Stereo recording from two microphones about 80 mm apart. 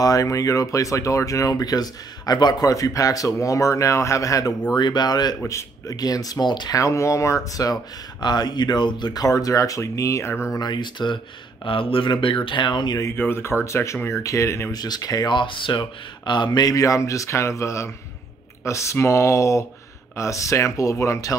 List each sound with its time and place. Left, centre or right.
0.0 s speech: left
2.7 s speech: left
4.7 s speech: left
5.4 s speech: left
5.9 s speech: left
6.7 s speech: left
8.2 s speech: left
10.5 s speech: left
11.6 s speech: left
13.1 s speech: left
14.7 s speech: left
15.3 s speech: left